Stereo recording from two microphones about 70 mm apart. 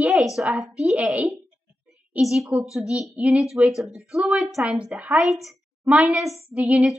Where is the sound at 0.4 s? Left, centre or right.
Centre.